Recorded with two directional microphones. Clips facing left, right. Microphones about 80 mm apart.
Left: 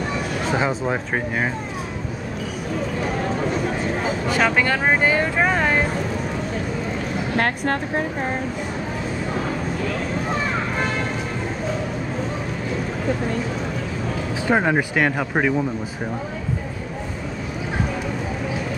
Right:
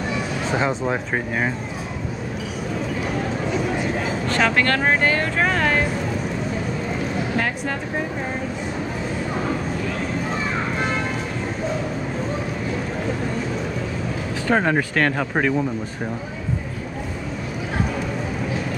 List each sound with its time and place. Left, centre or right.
0.5 s speech: centre
4.3 s speech: centre
7.3 s speech: left
14.5 s speech: centre